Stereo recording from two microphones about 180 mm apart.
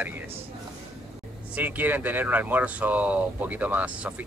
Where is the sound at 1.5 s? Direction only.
10° right (ahead or behind).